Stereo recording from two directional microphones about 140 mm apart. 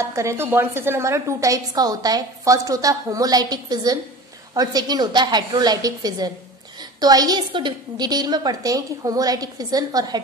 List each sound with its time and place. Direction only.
0.0 s a woman's voice: 20° right (ahead or behind)